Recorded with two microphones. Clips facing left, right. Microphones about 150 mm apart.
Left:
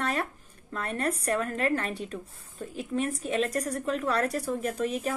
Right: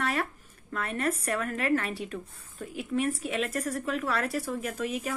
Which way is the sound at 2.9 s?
35° left (ahead or behind).